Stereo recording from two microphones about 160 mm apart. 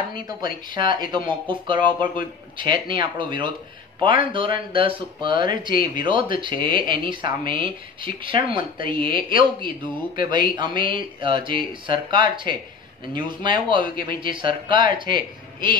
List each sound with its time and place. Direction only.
0.1 s speech: 25° right (ahead or behind)